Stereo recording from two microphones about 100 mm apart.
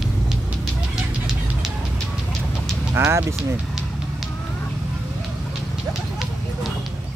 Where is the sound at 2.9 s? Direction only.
25° right (ahead or behind).